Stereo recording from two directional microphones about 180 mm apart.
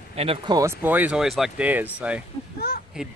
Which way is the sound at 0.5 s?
15° right (ahead or behind).